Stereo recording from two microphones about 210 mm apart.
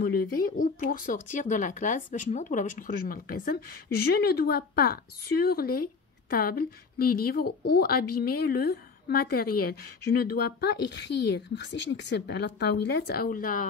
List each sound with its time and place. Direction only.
0.1 s speech: 45° left (ahead or behind)